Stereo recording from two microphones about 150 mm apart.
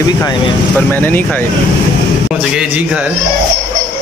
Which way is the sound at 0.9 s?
15° left (ahead or behind).